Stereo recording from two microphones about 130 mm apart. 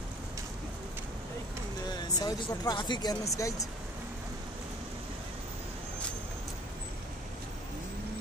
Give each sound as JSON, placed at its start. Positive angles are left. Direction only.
{"t": 2.1, "sound": "speech", "side_deg": 30}